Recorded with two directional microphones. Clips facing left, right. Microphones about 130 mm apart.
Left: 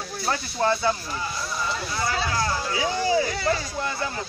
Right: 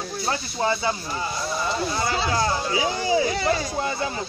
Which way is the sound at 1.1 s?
25° right (ahead or behind).